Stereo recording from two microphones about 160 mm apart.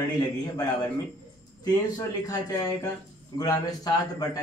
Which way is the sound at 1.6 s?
25° left (ahead or behind).